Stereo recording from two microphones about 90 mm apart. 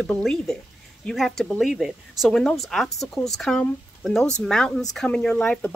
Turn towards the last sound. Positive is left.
turn(degrees=15)  # may be behind; listen again after turning